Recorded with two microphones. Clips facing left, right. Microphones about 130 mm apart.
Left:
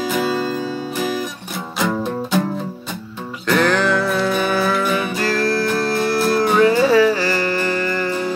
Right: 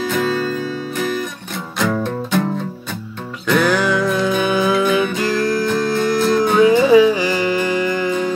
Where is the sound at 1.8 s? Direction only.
5° left (ahead or behind).